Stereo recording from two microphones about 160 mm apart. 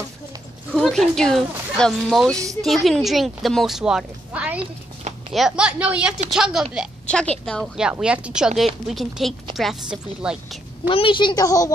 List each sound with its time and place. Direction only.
0.7 s speech: 5° left (ahead or behind)
10.9 s a woman's voice: 35° left (ahead or behind)